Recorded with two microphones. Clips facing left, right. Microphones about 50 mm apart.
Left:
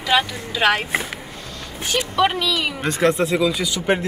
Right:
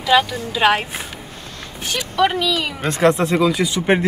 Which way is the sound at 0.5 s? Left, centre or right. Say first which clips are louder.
Right 1 dB; centre.